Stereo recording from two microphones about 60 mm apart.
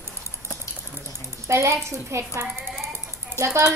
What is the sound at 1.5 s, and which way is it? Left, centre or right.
Speech, right.